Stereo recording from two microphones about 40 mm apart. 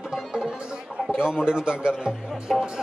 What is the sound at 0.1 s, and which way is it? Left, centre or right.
Speech, centre.